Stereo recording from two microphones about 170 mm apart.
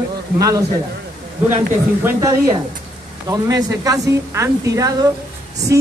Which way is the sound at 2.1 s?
20° right (ahead or behind).